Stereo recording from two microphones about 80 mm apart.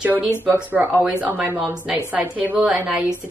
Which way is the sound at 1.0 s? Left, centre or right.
Centre.